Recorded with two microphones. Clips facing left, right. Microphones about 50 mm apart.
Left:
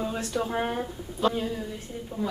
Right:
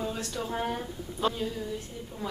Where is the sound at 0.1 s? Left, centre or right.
Left.